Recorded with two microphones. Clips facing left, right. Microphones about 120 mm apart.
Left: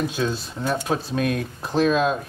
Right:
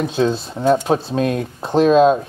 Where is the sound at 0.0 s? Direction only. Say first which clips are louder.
Right 6 dB; 25° right (ahead or behind).